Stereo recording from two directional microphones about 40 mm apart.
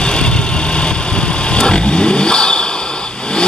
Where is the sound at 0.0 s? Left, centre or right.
Left.